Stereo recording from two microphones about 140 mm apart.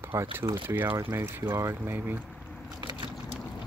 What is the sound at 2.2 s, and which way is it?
Biting, 5° left (ahead or behind).